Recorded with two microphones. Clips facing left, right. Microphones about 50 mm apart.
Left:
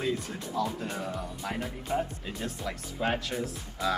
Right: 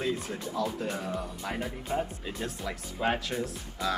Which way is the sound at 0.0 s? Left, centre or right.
Centre.